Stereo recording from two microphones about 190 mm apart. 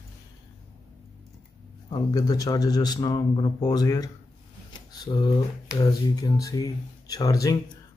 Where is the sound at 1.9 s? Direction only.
20° left (ahead or behind).